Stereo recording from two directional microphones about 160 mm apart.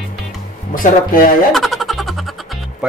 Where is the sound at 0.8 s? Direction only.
60° left (ahead or behind).